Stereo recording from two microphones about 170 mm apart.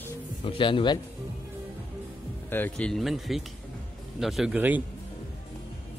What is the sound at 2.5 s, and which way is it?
Speech, 10° left (ahead or behind).